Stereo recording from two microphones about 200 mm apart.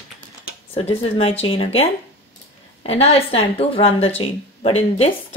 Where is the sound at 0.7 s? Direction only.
30° left (ahead or behind).